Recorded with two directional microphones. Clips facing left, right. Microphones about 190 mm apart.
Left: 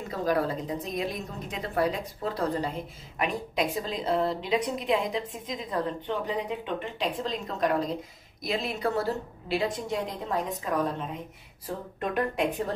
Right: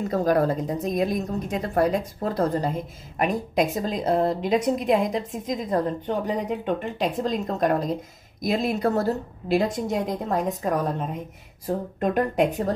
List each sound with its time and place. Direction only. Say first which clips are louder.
0.1 s a woman's voice: right 5 dB; 45° right (ahead or behind)